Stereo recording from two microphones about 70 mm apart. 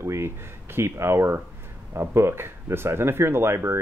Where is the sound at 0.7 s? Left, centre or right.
Right.